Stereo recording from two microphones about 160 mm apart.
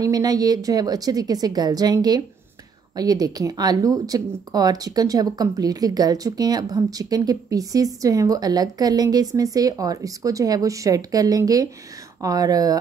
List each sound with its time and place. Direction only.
0.0 s speech: 25° right (ahead or behind)